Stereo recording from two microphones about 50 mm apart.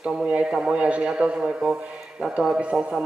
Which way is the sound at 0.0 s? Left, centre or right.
Centre.